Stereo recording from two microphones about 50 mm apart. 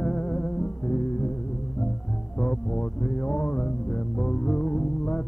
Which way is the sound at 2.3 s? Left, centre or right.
Left.